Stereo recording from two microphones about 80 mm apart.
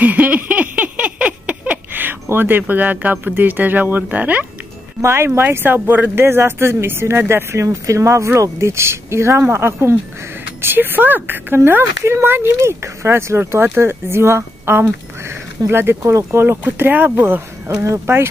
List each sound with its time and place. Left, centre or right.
0.0 s a sound: centre
2.2 s speech: right
5.0 s speech: right
16.3 s speech: right